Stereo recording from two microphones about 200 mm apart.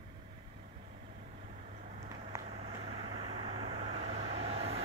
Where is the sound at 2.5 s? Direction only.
30° right (ahead or behind).